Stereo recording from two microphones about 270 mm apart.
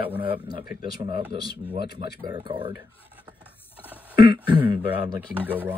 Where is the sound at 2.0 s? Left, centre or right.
Centre.